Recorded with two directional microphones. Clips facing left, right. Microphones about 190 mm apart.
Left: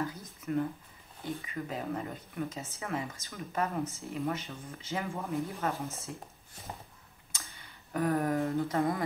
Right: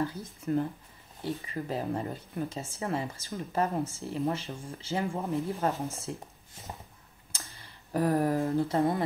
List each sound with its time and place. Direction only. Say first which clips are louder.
0.0 s speech: right 4 dB; 30° right (ahead or behind)
7.3 s speech: right 2 dB; 35° right (ahead or behind)